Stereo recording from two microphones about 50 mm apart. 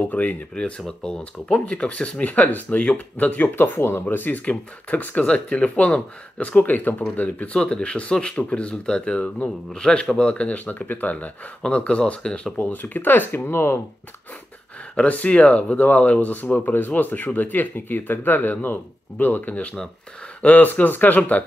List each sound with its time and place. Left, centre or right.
0.1 s speech: left
0.6 s speech: centre
3.3 s speech: left
4.1 s speech: left
7.5 s speech: centre
12.7 s speech: left
15.0 s speech: left